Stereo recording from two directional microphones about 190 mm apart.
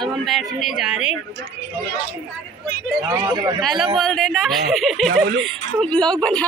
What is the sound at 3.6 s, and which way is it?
Speech, centre (ahead or behind).